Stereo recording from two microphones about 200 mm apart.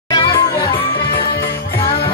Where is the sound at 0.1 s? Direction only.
20° left (ahead or behind).